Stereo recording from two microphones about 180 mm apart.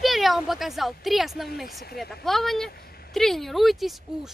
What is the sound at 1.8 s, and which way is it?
Speech, 60° left (ahead or behind).